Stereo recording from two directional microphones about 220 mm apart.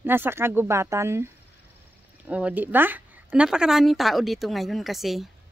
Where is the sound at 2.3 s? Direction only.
5° right (ahead or behind).